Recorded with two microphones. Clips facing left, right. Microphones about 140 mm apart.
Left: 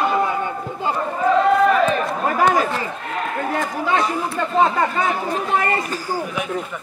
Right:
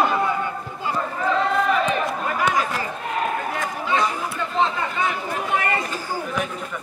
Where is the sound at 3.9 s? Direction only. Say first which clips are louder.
Left 2 dB; 50° left (ahead or behind).